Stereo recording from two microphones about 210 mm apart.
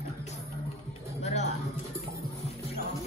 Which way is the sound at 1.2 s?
35° left (ahead or behind).